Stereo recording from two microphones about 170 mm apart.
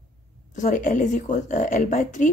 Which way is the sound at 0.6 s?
50° left (ahead or behind).